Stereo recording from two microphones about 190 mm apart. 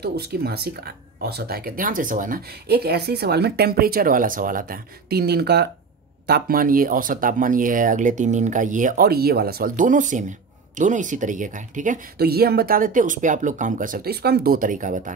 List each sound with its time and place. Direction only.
0.0 s speech: 55° right (ahead or behind)